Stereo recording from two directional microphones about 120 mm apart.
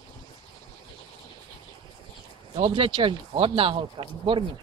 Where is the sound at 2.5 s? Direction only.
45° right (ahead or behind).